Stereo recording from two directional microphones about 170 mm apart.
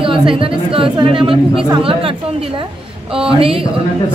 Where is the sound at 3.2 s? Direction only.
30° right (ahead or behind).